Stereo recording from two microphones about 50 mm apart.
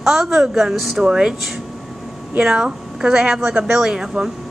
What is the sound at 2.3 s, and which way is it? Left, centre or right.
A woman's voice, centre.